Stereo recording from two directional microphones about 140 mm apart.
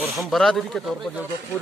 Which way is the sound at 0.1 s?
Centre (ahead or behind).